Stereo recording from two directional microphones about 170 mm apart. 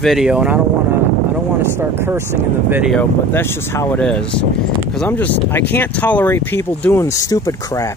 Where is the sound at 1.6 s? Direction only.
15° right (ahead or behind).